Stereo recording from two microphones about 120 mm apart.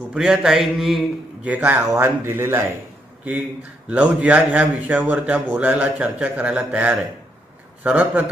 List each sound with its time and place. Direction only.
0.1 s a man's voice: 5° right (ahead or behind)
1.5 s a man's voice: 15° right (ahead or behind)
3.9 s a man's voice: 10° right (ahead or behind)